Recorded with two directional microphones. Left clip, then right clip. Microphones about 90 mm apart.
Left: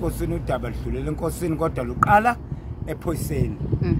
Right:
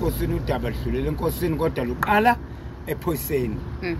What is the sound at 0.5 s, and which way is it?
Speech, 45° left (ahead or behind).